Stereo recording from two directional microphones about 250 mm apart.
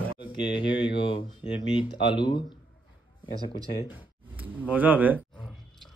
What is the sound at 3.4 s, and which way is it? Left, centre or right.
Speech, centre.